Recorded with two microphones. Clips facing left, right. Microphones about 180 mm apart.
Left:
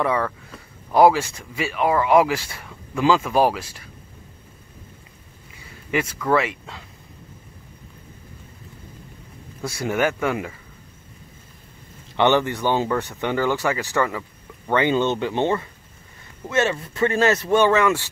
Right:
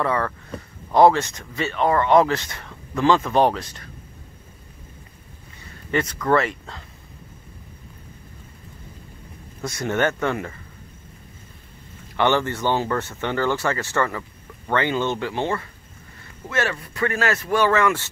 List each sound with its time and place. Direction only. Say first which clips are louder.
0.0 s speech: left 1 dB; 10° left (ahead or behind)
5.9 s speech: right 1 dB; 5° left (ahead or behind)
9.8 s speech: even; 5° left (ahead or behind)
12.2 s speech: left 2 dB; 15° left (ahead or behind)